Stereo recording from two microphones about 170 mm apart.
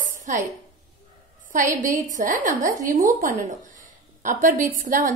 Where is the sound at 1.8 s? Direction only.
50° right (ahead or behind).